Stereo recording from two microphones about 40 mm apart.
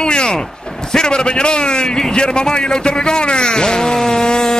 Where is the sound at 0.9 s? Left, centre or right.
Centre.